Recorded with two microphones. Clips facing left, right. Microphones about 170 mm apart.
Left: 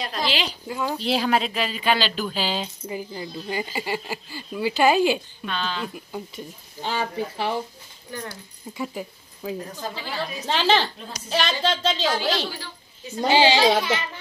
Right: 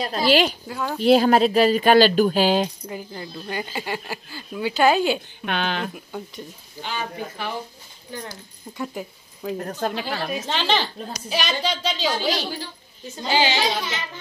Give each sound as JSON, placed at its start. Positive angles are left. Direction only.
{"t": 0.3, "sound": "speech", "side_deg": -50}
{"t": 0.7, "sound": "speech", "side_deg": 5}
{"t": 1.0, "sound": "speech", "side_deg": -45}
{"t": 2.8, "sound": "a woman's voice", "side_deg": 5}
{"t": 5.4, "sound": "a woman's voice", "side_deg": -60}
{"t": 6.8, "sound": "speech", "side_deg": 30}
{"t": 8.7, "sound": "speech", "side_deg": 0}
{"t": 9.6, "sound": "a woman's voice", "side_deg": -65}
{"t": 10.4, "sound": "a woman's voice", "side_deg": 0}
{"t": 13.3, "sound": "speech", "side_deg": 30}